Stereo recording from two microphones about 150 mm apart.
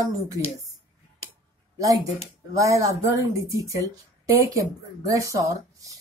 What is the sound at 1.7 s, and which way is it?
A woman's voice, 25° right (ahead or behind).